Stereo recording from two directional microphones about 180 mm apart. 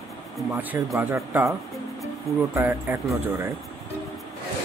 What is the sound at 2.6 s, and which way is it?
Speech, 10° right (ahead or behind).